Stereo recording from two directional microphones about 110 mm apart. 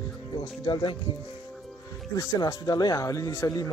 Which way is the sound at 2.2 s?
35° left (ahead or behind).